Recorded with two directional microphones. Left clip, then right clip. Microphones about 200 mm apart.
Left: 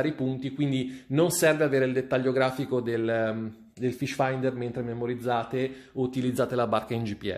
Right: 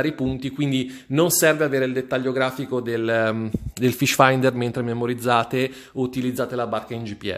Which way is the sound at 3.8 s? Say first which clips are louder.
Right 10 dB; 40° right (ahead or behind).